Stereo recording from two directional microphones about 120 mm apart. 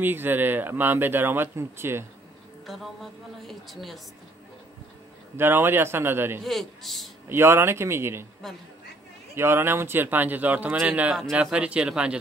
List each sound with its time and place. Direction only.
0.0 s speech: 15° right (ahead or behind)
2.6 s a woman's voice: centre (ahead or behind)
5.4 s speech: 20° right (ahead or behind)
6.4 s a woman's voice: centre (ahead or behind)
7.2 s speech: 20° right (ahead or behind)
9.3 s speech: 20° right (ahead or behind)